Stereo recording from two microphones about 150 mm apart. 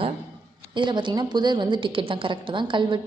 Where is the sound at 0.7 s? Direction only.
30° right (ahead or behind).